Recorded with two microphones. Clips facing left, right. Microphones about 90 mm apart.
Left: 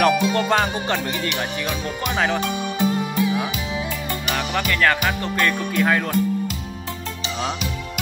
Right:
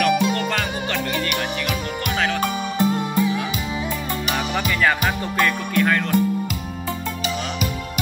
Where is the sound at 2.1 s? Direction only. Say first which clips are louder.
Even; 10° left (ahead or behind).